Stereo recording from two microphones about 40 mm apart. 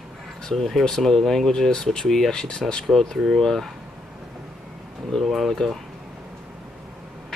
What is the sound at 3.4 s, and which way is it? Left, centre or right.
Speech, centre.